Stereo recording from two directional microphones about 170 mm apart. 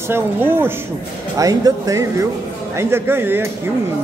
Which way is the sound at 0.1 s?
15° right (ahead or behind).